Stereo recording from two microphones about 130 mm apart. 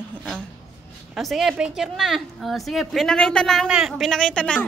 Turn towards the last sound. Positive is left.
turn(degrees=10)  # may be behind; listen again after turning